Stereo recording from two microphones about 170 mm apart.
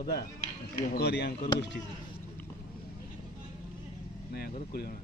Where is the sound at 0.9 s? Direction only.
75° left (ahead or behind).